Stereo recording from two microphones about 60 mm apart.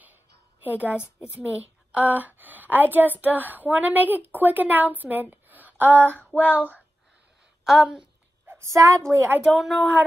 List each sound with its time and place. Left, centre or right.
0.0 s a sound: right
1.4 s a woman's voice: right
7.6 s a woman's voice: centre
8.5 s a woman's voice: right
9.4 s speech: centre